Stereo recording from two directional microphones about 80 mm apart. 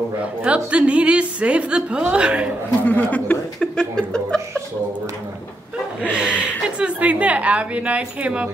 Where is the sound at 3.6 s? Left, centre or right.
Centre.